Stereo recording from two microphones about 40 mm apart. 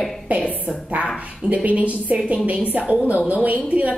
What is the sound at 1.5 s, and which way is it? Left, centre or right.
A woman's voice, right.